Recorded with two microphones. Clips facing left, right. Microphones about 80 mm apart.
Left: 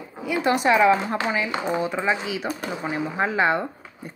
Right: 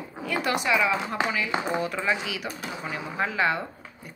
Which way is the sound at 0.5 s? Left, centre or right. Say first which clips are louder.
Left 8 dB; left.